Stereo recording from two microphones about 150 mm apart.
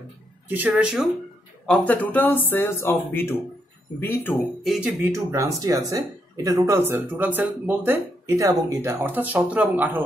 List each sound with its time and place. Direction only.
0.5 s speech: 10° right (ahead or behind)
1.7 s speech: 10° left (ahead or behind)
4.6 s speech: 5° right (ahead or behind)
5.1 s speech: 20° right (ahead or behind)